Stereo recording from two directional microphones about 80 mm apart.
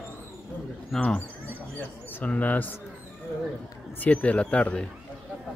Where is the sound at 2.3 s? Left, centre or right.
Centre.